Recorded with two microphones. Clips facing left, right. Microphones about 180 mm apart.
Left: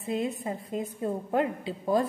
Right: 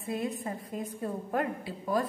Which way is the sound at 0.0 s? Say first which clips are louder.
Left 3 dB; 20° left (ahead or behind).